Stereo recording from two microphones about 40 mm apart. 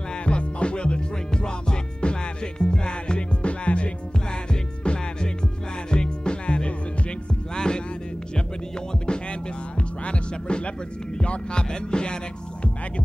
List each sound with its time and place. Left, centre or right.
0.2 s music: left
9.0 s music: left